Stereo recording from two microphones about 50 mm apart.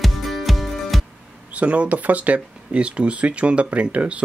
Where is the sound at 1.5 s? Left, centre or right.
Right.